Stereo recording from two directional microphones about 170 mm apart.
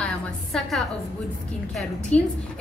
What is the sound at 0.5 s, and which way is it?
Speech, centre (ahead or behind).